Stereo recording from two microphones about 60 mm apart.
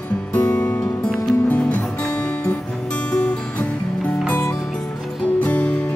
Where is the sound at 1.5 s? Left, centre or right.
Left.